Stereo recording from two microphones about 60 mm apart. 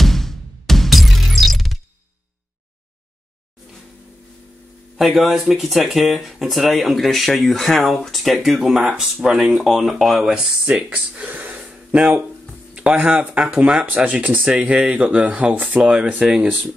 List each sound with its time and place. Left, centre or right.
0.0 s music: centre
4.9 s speech: centre
9.8 s speech: centre
10.3 s speech: centre
11.1 s gasp: right
12.7 s speech: centre